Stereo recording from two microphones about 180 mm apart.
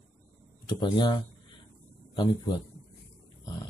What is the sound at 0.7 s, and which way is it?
Speech, 25° left (ahead or behind).